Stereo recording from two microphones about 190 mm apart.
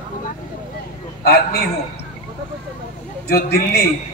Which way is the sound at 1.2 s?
55° left (ahead or behind).